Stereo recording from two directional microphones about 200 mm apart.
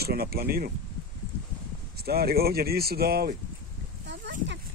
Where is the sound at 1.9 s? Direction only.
50° right (ahead or behind).